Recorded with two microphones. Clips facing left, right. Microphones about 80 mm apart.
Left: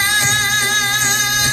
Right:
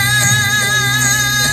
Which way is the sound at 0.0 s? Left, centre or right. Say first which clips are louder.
Right 2 dB; right.